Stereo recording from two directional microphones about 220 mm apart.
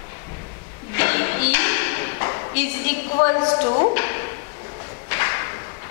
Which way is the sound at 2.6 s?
10° left (ahead or behind).